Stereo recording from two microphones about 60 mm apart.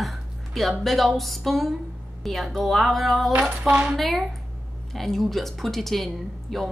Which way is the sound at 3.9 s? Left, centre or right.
Centre.